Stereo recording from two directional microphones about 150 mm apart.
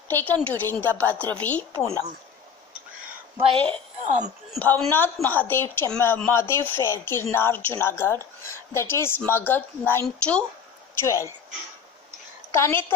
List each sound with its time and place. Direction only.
0.1 s a woman's voice: 10° left (ahead or behind)
3.3 s a woman's voice: 40° right (ahead or behind)
4.0 s speech: 55° right (ahead or behind)
4.6 s a woman's voice: 10° left (ahead or behind)
11.0 s a woman's voice: 20° left (ahead or behind)
12.5 s a woman's voice: 15° left (ahead or behind)